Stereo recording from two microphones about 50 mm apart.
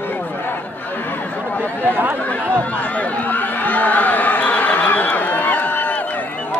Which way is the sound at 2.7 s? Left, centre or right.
Left.